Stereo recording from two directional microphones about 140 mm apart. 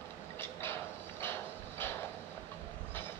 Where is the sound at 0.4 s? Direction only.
15° left (ahead or behind).